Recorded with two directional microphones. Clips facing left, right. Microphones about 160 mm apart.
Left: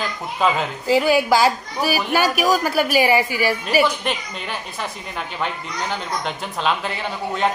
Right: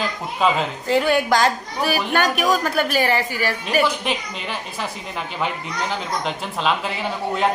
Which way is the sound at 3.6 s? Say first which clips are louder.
Right 1 dB; centre (ahead or behind).